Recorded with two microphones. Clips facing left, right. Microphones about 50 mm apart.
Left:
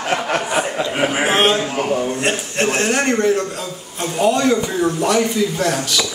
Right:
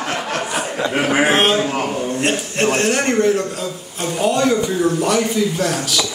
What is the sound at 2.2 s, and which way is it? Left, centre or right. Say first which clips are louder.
A man's voice: right 1 dB; centre.